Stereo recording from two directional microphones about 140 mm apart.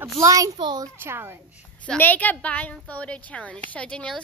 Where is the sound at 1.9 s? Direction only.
10° left (ahead or behind).